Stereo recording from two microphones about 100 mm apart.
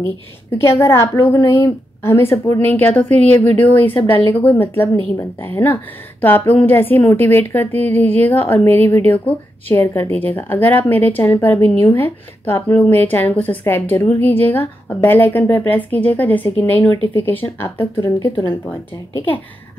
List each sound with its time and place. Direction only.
0.5 s a woman's voice: 25° left (ahead or behind)